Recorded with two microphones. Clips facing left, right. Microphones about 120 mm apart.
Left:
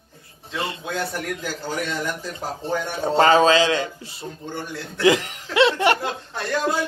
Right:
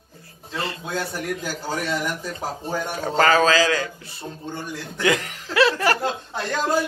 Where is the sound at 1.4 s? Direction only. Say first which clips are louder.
Even; 10° right (ahead or behind).